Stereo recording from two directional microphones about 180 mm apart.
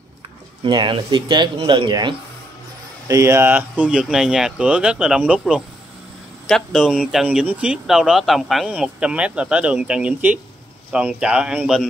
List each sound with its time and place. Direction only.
0.7 s speech: 25° right (ahead or behind); by 11.8 s 5° right (ahead or behind)